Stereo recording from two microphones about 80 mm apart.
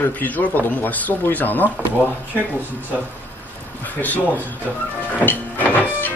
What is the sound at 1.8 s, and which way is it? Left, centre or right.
Speech, right.